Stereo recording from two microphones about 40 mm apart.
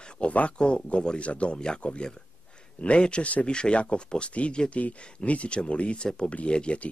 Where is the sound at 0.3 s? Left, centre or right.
Left.